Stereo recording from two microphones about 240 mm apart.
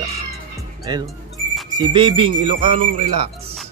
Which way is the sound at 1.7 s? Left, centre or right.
Centre.